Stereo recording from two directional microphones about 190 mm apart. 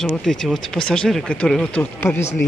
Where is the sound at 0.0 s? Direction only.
Centre (ahead or behind).